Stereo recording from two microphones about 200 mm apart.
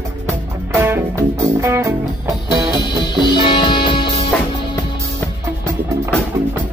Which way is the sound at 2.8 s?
20° left (ahead or behind).